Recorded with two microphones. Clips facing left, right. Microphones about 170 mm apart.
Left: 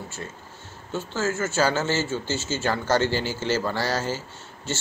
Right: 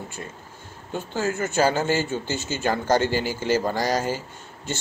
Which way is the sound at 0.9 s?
15° right (ahead or behind).